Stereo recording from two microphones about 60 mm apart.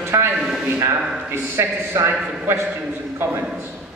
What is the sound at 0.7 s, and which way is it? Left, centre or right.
A man's voice, right.